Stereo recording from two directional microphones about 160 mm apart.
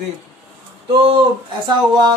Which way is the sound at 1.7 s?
25° right (ahead or behind).